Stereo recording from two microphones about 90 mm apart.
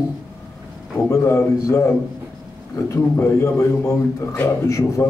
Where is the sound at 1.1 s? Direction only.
30° left (ahead or behind).